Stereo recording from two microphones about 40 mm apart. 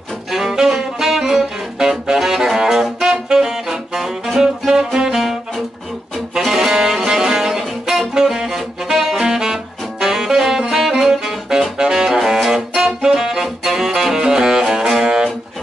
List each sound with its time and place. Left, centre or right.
0.3 s music: centre
2.1 s saxophone: centre
4.4 s music: centre
6.4 s saxophone: centre
14.9 s music: centre